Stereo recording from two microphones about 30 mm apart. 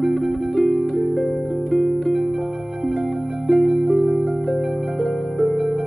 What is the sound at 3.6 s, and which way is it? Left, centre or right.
Music, centre.